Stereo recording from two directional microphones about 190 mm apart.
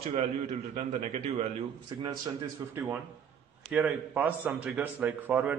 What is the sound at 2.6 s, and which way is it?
A man's voice, 15° right (ahead or behind).